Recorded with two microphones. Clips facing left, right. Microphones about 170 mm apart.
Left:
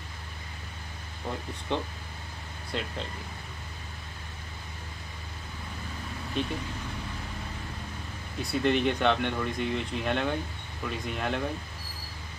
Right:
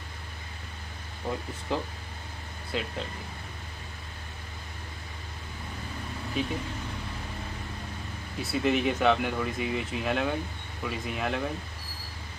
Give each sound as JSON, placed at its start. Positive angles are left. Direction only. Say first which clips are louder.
{"t": 1.7, "sound": "speech", "louder": "even", "side_deg": -5}
{"t": 6.4, "sound": "speech", "louder": "even", "side_deg": -5}
{"t": 8.4, "sound": "speech", "louder": "even", "side_deg": -5}